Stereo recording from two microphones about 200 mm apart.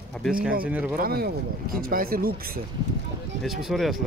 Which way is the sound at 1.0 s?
50° right (ahead or behind).